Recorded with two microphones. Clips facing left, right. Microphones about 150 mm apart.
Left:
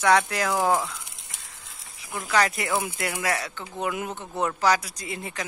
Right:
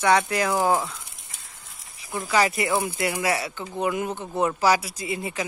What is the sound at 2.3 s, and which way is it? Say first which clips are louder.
Speech: right 2 dB; 5° right (ahead or behind).